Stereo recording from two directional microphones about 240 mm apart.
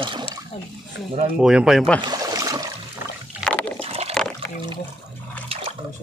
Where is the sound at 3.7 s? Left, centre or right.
Right.